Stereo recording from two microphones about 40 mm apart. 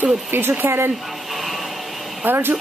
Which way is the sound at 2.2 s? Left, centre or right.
Right.